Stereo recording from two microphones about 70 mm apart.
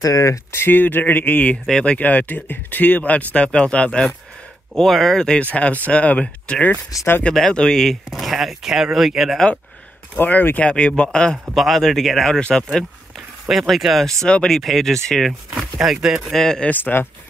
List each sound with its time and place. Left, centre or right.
0.0 s speech: left
0.7 s speech: left
1.5 s speech: centre
10.1 s speech: left
11.5 s speech: centre
13.5 s speech: centre
14.2 s speech: centre
14.6 s speech: centre
15.5 s speech: centre
16.3 s speech: centre
16.6 s speech: left